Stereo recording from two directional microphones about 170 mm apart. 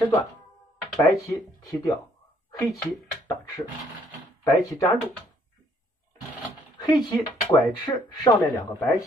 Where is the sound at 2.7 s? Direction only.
20° left (ahead or behind).